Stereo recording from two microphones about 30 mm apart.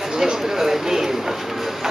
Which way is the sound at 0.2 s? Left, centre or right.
Centre.